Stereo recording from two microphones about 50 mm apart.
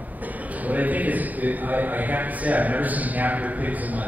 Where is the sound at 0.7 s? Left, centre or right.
Right.